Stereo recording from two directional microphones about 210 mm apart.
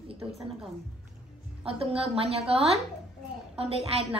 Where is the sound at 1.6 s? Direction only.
25° right (ahead or behind).